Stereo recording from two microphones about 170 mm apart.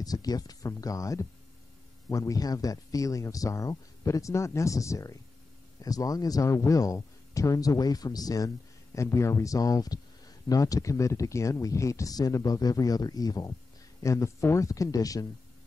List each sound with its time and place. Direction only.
0.0 s speech: 20° left (ahead or behind)